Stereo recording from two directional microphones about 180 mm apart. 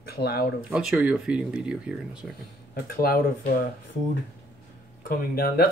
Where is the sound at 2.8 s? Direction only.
55° left (ahead or behind).